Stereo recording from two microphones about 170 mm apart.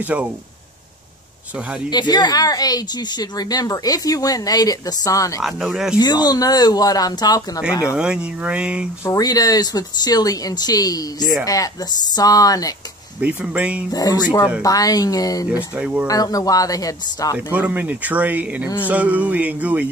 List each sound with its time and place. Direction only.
0.0 s speech: 10° right (ahead or behind)
1.9 s a woman's voice: 25° left (ahead or behind)
5.4 s speech: centre (ahead or behind)
5.9 s a woman's voice: 25° left (ahead or behind)
7.9 s speech: 5° right (ahead or behind)
9.0 s a woman's voice: 20° left (ahead or behind)
13.2 s speech: 10° right (ahead or behind)
13.9 s a woman's voice: 20° left (ahead or behind)
15.7 s speech: 10° right (ahead or behind)
16.1 s a woman's voice: 20° left (ahead or behind)
17.4 s speech: 10° right (ahead or behind)